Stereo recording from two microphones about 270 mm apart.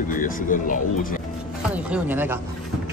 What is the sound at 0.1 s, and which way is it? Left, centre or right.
Speech, left.